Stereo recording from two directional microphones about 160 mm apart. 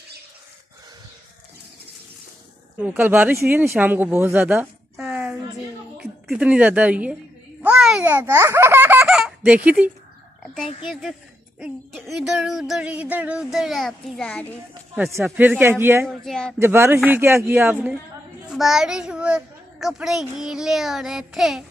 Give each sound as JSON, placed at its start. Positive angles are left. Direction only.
{"t": 2.8, "sound": "speech", "side_deg": -15}
{"t": 5.0, "sound": "a sound", "side_deg": -10}
{"t": 5.9, "sound": "a woman's voice", "side_deg": -5}
{"t": 7.6, "sound": "a sound", "side_deg": -5}
{"t": 8.1, "sound": "speech", "side_deg": -15}
{"t": 9.0, "sound": "a sound", "side_deg": -5}
{"t": 10.9, "sound": "a child's voice", "side_deg": 0}
{"t": 15.0, "sound": "speech", "side_deg": -15}
{"t": 16.1, "sound": "a child's voice", "side_deg": 5}
{"t": 16.5, "sound": "a child's voice", "side_deg": -15}